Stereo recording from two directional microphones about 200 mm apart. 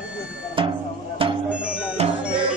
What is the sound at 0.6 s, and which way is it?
Music, 25° right (ahead or behind).